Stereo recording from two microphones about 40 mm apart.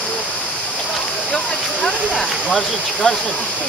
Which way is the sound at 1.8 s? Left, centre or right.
Centre.